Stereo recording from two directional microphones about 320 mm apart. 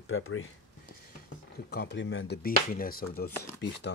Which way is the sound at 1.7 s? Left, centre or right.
Left.